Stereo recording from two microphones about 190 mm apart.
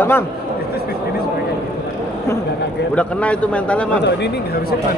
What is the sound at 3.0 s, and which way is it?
A man's voice, 5° left (ahead or behind).